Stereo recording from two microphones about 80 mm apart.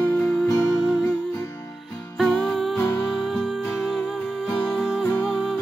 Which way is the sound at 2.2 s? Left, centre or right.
Centre.